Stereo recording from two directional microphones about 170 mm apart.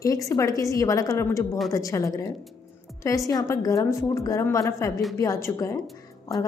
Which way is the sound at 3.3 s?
20° left (ahead or behind).